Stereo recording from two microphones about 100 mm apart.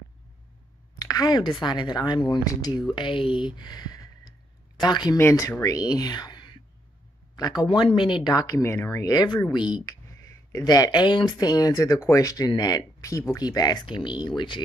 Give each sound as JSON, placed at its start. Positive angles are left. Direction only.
{"t": 0.9, "sound": "speech", "side_deg": 35}
{"t": 2.4, "sound": "speech", "side_deg": 35}
{"t": 2.9, "sound": "speech", "side_deg": 55}
{"t": 5.1, "sound": "speech", "side_deg": 30}
{"t": 7.3, "sound": "speech", "side_deg": 40}
{"t": 7.6, "sound": "speech", "side_deg": 55}
{"t": 9.8, "sound": "speech", "side_deg": 35}